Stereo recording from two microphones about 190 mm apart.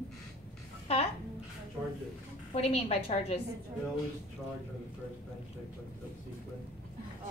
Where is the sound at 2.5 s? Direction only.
30° left (ahead or behind).